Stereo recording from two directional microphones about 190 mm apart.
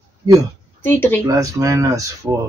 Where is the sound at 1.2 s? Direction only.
15° right (ahead or behind).